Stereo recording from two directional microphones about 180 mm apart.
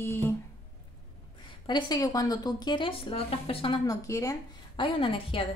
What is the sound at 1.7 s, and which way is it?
Speech, 25° left (ahead or behind).